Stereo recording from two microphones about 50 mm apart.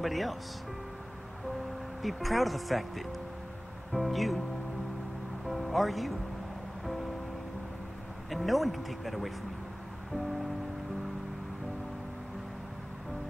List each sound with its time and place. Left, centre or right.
0.0 s speech: centre
2.0 s speech: centre
3.9 s music: centre
5.5 s speech: centre
8.3 s speech: centre